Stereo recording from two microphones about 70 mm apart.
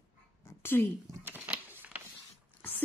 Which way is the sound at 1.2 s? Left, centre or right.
Right.